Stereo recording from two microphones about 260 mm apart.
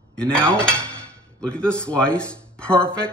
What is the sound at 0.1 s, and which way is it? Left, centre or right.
Dishes, centre.